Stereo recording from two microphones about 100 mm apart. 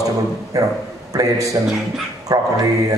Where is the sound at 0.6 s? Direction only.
35° right (ahead or behind).